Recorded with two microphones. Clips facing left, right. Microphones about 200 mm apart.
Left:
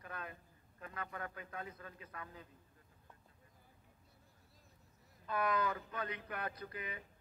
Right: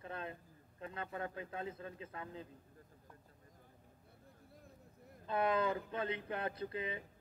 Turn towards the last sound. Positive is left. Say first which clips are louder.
# right 6 dB
turn(degrees=-25)  # may be behind; listen again after turning